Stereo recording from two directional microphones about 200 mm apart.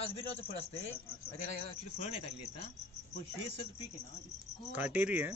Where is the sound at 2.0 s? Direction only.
30° left (ahead or behind).